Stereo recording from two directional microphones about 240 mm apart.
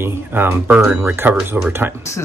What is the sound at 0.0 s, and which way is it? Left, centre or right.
Speech, centre.